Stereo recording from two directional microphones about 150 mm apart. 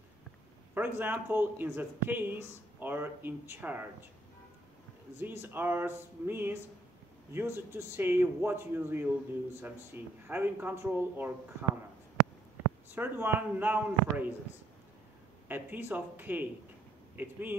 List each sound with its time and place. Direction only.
0.7 s speech: 10° right (ahead or behind)
5.2 s speech: 15° right (ahead or behind)
12.9 s speech: 10° right (ahead or behind)
15.4 s speech: 10° right (ahead or behind)